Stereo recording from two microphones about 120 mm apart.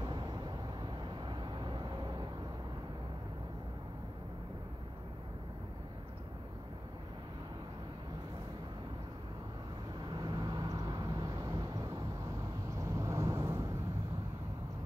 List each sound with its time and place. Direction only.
0.0 s vehicle: 35° right (ahead or behind)
10.0 s vehicle: 40° right (ahead or behind)